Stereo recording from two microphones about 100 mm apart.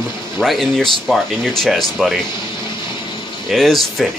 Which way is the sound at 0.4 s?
5° left (ahead or behind).